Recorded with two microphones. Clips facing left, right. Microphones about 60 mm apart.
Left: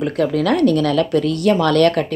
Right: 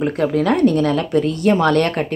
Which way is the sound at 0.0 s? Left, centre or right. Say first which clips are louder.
Even; right.